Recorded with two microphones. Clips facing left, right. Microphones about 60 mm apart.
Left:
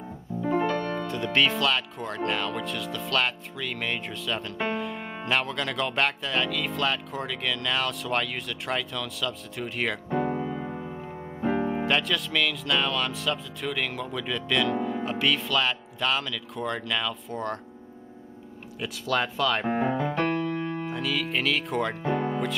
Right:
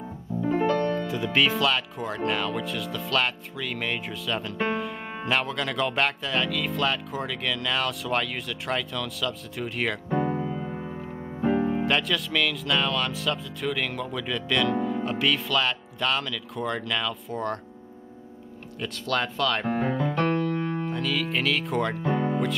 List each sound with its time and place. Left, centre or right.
0.4 s piano: centre
0.9 s speech: centre
10.2 s music: left
10.7 s music: centre
11.5 s speech: centre
18.8 s speech: centre
19.7 s piano: centre